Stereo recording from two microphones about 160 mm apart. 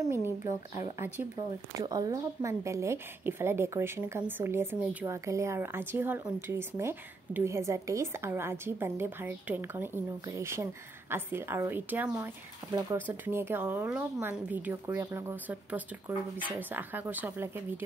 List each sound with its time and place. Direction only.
0.1 s speech: 15° right (ahead or behind)
0.5 s speech: 45° left (ahead or behind)
1.8 s speech: 20° right (ahead or behind)